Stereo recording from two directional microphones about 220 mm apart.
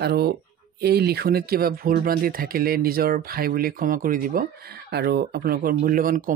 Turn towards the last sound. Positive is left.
turn(degrees=-40)  # may be behind; listen again after turning